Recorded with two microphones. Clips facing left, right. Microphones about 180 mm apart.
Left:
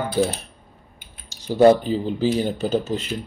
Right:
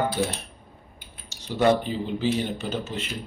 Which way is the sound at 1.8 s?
35° left (ahead or behind).